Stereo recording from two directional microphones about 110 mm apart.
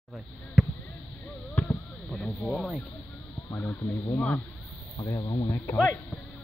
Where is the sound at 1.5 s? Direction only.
20° left (ahead or behind).